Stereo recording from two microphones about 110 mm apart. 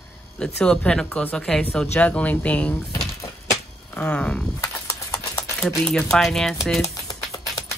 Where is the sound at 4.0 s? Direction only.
10° left (ahead or behind).